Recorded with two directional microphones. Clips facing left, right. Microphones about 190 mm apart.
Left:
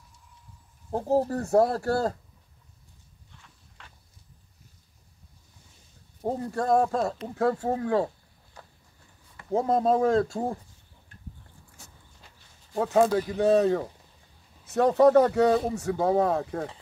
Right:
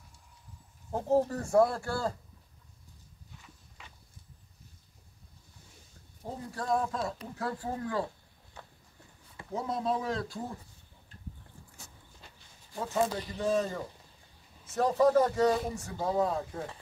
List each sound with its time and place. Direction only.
0.9 s speech: 35° left (ahead or behind)
3.3 s walk: 5° right (ahead or behind)
6.2 s speech: 50° left (ahead or behind)
7.6 s speech: 70° left (ahead or behind)
9.5 s speech: 50° left (ahead or behind)
12.7 s speech: 60° left (ahead or behind)